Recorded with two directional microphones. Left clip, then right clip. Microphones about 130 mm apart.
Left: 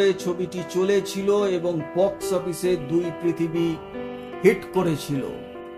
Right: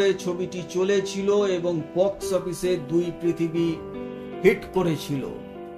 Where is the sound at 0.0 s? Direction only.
45° left (ahead or behind).